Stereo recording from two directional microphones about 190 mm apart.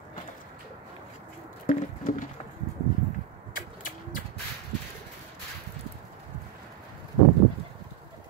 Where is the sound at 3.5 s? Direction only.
45° left (ahead or behind).